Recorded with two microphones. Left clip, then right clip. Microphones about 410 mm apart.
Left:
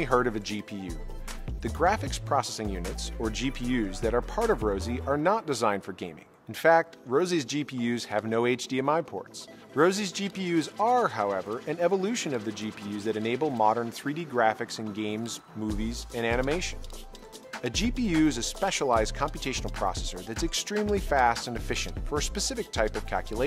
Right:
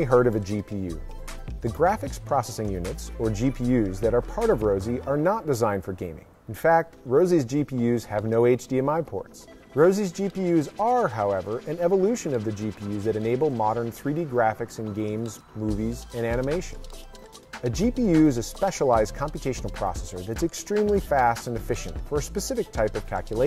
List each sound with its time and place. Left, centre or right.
0.0 s speech: right
6.6 s speech: right
17.6 s speech: right